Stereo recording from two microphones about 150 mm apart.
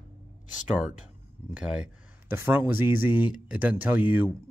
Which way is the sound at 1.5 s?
5° right (ahead or behind).